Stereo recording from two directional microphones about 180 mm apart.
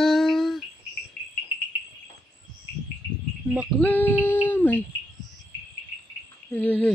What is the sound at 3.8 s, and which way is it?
Female singing, 10° left (ahead or behind).